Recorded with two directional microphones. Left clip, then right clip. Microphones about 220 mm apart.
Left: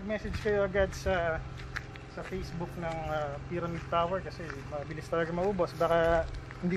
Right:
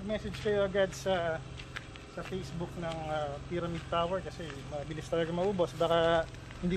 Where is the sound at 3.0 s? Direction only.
15° right (ahead or behind).